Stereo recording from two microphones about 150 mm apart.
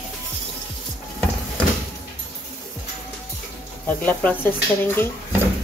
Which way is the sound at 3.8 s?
10° left (ahead or behind).